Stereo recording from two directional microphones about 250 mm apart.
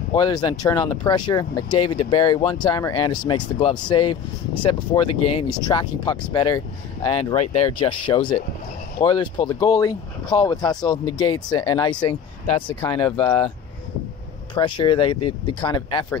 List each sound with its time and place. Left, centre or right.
0.1 s speech: centre
14.5 s speech: centre